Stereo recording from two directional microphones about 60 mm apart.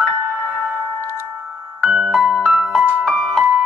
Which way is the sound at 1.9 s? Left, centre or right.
Centre.